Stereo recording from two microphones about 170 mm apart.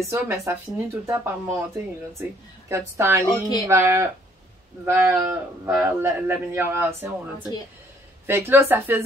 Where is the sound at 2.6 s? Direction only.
15° right (ahead or behind).